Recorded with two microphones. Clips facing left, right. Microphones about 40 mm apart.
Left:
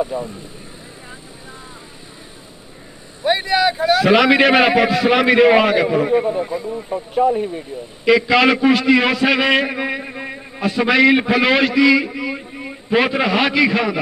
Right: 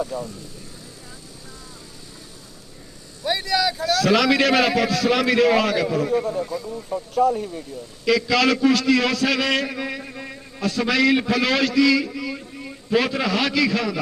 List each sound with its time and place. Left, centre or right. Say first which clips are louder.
0.0 s a man's voice: left 5 dB; left
3.2 s a man's voice: left 5 dB; left